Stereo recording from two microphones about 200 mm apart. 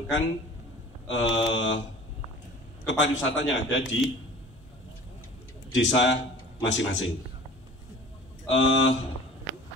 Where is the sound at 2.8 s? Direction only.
70° left (ahead or behind).